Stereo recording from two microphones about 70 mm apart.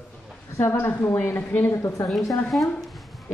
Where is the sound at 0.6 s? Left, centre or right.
Left.